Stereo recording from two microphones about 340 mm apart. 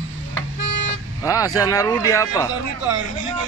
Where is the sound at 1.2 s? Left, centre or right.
Centre.